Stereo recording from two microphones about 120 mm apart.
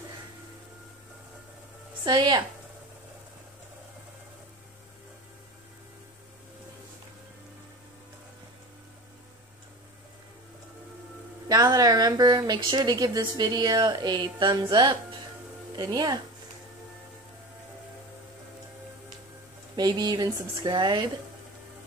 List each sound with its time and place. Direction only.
2.0 s speech: 35° right (ahead or behind)
11.4 s speech: 30° right (ahead or behind)
19.7 s speech: 35° right (ahead or behind)